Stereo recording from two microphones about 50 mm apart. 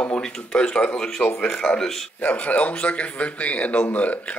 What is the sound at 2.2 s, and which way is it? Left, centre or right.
A man's voice, left.